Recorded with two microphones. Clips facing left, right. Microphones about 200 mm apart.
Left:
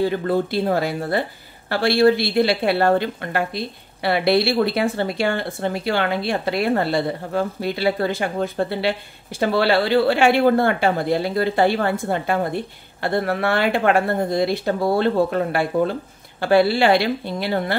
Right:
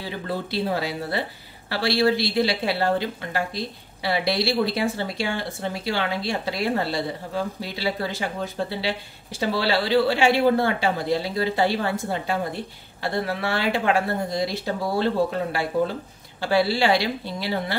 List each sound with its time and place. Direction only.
0.0 s a woman's voice: 50° left (ahead or behind)